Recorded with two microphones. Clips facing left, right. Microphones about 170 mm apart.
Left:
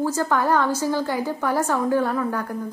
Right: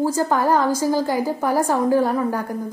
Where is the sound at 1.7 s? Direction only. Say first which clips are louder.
Right 4 dB; 40° right (ahead or behind).